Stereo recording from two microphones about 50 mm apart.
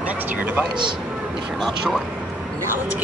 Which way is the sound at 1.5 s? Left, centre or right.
Centre.